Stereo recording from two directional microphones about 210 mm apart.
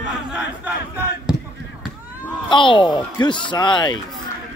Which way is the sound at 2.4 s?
25° left (ahead or behind).